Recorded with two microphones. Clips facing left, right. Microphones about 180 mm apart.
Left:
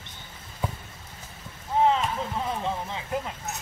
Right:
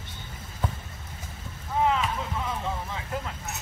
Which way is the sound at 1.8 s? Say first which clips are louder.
Left 2 dB; 30° left (ahead or behind).